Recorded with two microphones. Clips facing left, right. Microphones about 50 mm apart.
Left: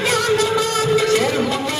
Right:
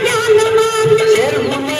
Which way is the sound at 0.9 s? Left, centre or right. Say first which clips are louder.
Right 5 dB; right.